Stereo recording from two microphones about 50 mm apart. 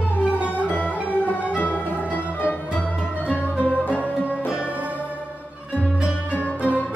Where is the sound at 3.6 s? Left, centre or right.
Left.